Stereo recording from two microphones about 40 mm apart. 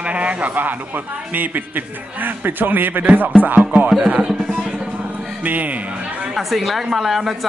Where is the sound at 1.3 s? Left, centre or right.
Right.